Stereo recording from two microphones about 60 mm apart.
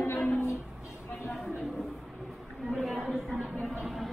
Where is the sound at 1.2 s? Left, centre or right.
Centre.